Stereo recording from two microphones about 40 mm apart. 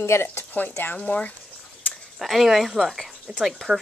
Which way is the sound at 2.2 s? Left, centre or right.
Centre.